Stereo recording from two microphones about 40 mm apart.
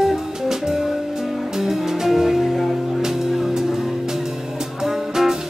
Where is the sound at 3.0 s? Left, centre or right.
Centre.